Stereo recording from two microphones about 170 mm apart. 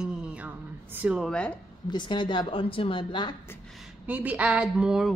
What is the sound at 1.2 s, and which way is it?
Speech, 5° left (ahead or behind).